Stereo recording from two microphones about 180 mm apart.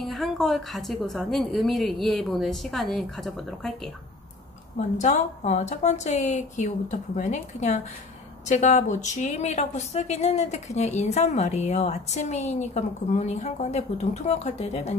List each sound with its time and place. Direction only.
0.0 s a woman's voice: centre (ahead or behind)
4.9 s a woman's voice: 40° left (ahead or behind)